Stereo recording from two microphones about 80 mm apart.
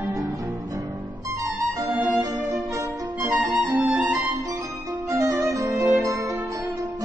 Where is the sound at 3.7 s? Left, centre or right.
Centre.